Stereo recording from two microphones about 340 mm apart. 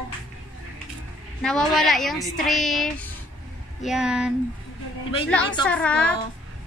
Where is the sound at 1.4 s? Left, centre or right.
Centre.